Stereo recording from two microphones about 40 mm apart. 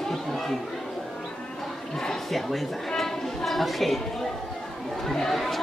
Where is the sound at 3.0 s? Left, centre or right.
Centre.